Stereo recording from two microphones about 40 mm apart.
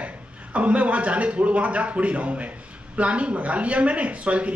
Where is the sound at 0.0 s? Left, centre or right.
Right.